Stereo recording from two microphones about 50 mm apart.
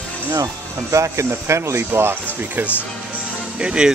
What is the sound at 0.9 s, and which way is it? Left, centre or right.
Speech, right.